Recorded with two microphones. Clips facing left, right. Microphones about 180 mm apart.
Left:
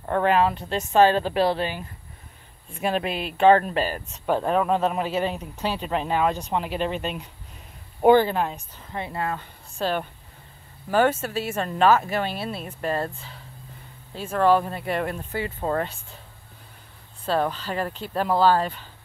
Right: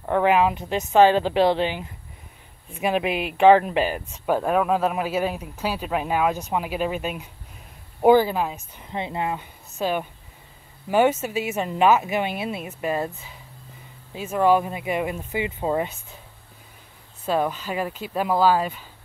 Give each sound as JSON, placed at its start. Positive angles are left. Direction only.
{"t": 0.0, "sound": "speech", "side_deg": -15}
{"t": 4.4, "sound": "speech", "side_deg": -5}
{"t": 8.7, "sound": "speech", "side_deg": -20}
{"t": 17.3, "sound": "speech", "side_deg": -10}